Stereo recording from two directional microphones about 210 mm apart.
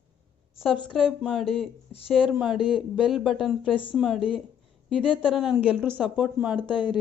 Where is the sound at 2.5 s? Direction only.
20° left (ahead or behind).